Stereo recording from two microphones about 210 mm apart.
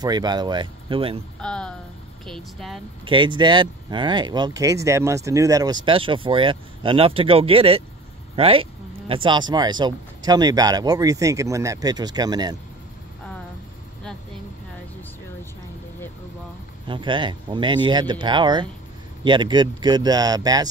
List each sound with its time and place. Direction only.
0.0 s speech: 20° right (ahead or behind)
1.4 s speech: 5° left (ahead or behind)
3.1 s speech: 20° right (ahead or behind)
16.8 s speech: 25° right (ahead or behind)